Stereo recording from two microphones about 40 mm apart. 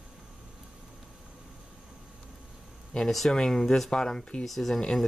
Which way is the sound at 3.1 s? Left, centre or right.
Centre.